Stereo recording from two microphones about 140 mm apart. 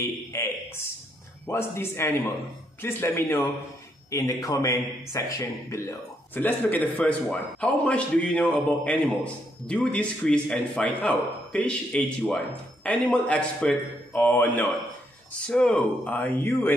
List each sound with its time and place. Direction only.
0.3 s a man's voice: 20° left (ahead or behind)